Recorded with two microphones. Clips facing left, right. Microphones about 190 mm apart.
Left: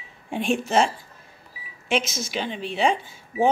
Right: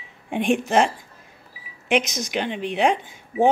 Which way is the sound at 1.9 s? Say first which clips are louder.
Right 3 dB; 15° right (ahead or behind).